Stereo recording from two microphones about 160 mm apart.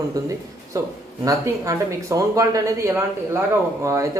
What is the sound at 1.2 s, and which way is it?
Speech, 20° right (ahead or behind).